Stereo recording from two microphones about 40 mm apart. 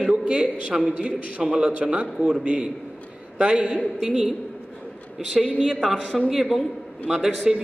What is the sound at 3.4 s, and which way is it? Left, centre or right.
Speech, right.